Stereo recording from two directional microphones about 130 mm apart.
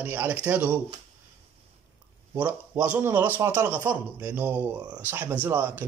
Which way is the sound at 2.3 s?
15° right (ahead or behind).